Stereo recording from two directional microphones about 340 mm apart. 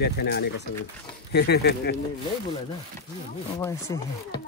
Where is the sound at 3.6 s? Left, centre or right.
Centre.